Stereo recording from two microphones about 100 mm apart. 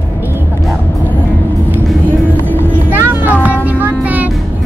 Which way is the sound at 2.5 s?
20° right (ahead or behind).